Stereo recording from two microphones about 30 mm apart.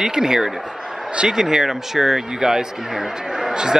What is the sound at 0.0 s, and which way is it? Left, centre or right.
Speech, centre.